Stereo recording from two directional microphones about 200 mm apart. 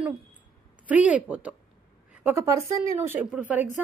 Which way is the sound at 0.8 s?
5° right (ahead or behind).